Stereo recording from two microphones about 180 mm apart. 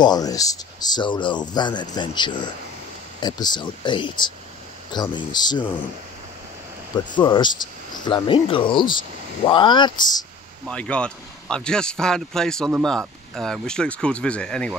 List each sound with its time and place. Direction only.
0.0 s speech: 20° left (ahead or behind)
7.2 s speech: 25° left (ahead or behind)
10.7 s speech: 5° left (ahead or behind)